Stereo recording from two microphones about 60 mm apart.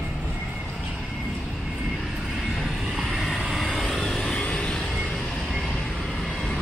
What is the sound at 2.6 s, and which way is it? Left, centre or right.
Vehicle, centre.